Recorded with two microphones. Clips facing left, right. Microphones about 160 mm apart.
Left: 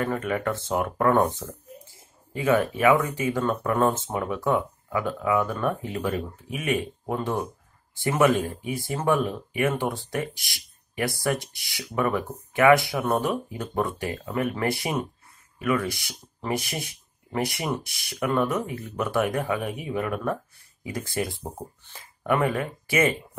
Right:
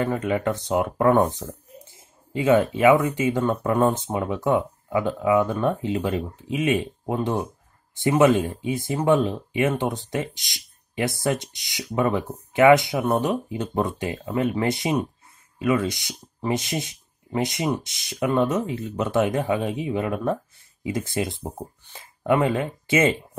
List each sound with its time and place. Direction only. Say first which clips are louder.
0.0 s speech: right 3 dB; 20° right (ahead or behind)
21.9 s speech: right 4 dB; 25° right (ahead or behind)